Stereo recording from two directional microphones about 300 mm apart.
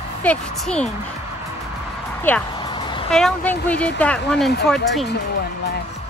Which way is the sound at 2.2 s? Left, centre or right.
Centre.